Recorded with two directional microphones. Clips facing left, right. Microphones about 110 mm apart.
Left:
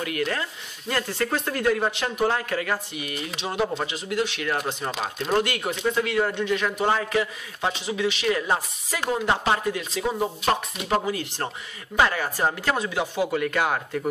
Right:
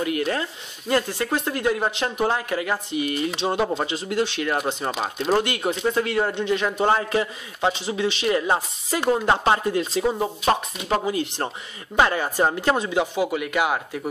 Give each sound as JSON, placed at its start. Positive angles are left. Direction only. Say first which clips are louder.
{"t": 0.0, "sound": "a man's voice", "louder": "right 3 dB", "side_deg": -25}
{"t": 11.1, "sound": "a man's voice", "louder": "right 3 dB", "side_deg": -20}